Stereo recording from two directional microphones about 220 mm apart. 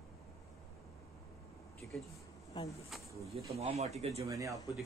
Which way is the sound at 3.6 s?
30° right (ahead or behind).